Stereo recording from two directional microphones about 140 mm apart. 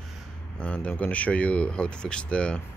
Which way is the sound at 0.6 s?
10° left (ahead or behind).